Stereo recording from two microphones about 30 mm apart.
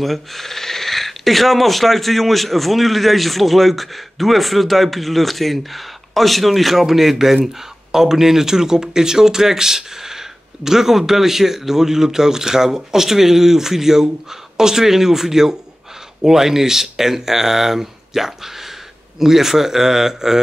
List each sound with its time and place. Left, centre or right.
0.0 s speech: centre